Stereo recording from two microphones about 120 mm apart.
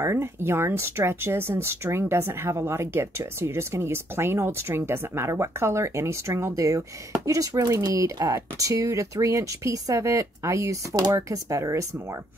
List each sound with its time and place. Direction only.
0.0 s speech: 20° right (ahead or behind)